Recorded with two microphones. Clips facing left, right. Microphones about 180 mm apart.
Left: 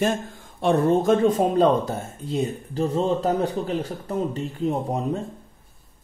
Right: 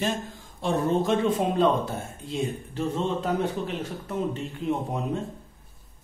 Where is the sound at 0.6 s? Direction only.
60° left (ahead or behind).